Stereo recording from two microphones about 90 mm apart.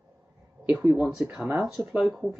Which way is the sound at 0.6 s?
15° right (ahead or behind).